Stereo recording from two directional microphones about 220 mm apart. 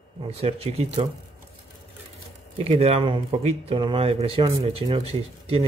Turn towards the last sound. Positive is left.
turn(degrees=-25)  # may be behind; listen again after turning